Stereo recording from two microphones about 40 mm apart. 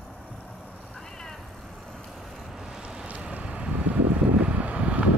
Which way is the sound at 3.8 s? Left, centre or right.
Right.